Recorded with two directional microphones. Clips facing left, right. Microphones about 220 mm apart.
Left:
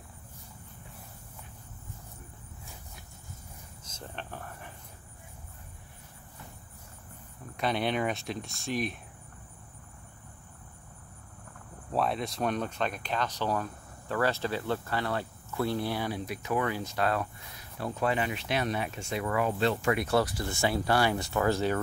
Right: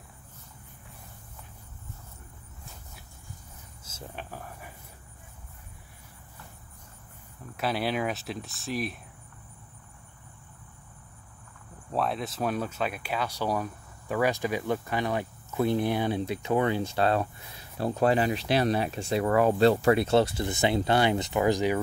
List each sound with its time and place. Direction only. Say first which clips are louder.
3.8 s speech: right 1 dB; 5° right (ahead or behind)
7.5 s speech: even; 5° right (ahead or behind)
11.9 s speech: even; centre (ahead or behind)